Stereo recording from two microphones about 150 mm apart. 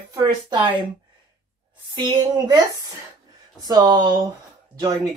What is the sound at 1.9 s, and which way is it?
Speech, 30° right (ahead or behind).